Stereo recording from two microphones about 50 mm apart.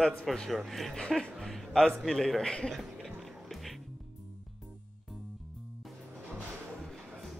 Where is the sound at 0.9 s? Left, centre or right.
Centre.